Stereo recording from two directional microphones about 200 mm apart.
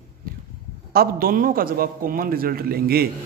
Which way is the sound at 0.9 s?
50° right (ahead or behind).